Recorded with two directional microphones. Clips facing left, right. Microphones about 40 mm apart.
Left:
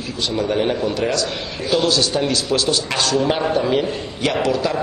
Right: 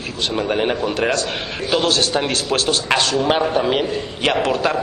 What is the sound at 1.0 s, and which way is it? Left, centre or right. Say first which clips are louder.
A man's voice: right 1 dB; right.